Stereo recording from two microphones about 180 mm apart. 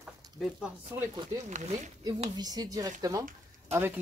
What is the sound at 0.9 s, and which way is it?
Speech, 10° right (ahead or behind).